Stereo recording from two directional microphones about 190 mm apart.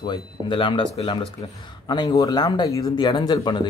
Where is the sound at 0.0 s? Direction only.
25° left (ahead or behind).